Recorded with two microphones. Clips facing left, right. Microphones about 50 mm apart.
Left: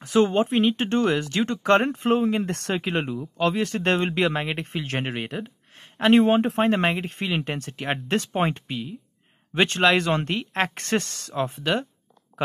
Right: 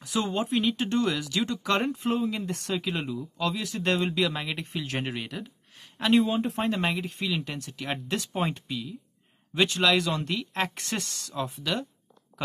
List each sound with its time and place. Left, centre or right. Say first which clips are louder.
0.0 s speech: left 8 dB; left
2.1 s speech: left 6 dB; left
6.1 s speech: left 5 dB; left
6.8 s speech: left 4 dB; left